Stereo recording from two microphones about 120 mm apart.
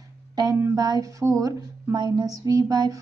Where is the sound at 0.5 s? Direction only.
25° right (ahead or behind).